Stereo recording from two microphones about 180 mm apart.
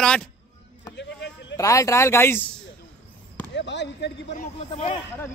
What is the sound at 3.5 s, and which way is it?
Speech, 80° left.